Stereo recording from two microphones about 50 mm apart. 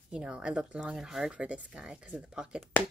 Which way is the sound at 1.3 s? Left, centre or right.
Right.